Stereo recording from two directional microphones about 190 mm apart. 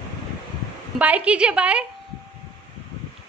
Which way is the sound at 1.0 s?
5° right (ahead or behind).